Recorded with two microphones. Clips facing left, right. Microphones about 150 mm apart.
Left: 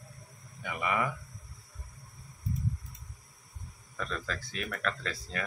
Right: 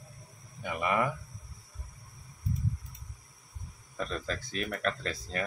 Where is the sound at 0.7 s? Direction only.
30° right (ahead or behind).